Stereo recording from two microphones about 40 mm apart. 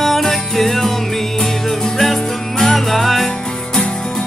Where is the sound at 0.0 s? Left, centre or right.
Centre.